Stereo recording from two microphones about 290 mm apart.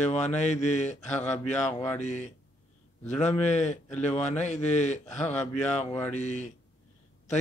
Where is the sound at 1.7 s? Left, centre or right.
Centre.